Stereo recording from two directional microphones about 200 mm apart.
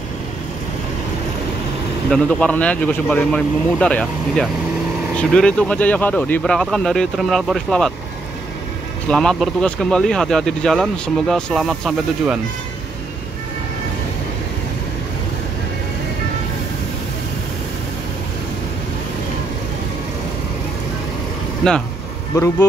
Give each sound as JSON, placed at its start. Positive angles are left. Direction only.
{"t": 2.0, "sound": "speech", "side_deg": 5}
{"t": 9.0, "sound": "speech", "side_deg": 5}
{"t": 22.3, "sound": "speech", "side_deg": 15}